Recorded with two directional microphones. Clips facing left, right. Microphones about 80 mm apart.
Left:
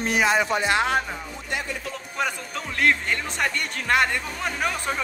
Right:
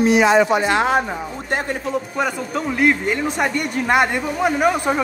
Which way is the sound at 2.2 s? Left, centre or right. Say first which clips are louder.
Right 6 dB; centre.